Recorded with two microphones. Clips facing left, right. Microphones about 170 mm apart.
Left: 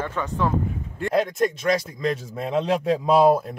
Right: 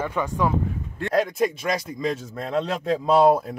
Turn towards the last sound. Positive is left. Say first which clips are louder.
# even
turn(degrees=0)  # may be behind; listen again after turning